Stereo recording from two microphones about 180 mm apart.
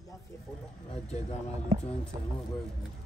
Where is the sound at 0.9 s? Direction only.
35° left (ahead or behind).